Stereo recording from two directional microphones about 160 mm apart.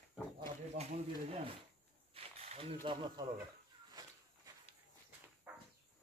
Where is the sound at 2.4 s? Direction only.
35° right (ahead or behind).